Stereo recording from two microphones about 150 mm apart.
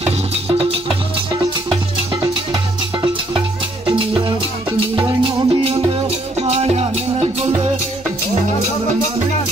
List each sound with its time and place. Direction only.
0.0 s music: 45° right (ahead or behind)
3.0 s music: 30° right (ahead or behind)